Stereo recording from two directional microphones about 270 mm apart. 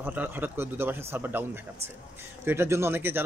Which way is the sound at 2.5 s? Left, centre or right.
Centre.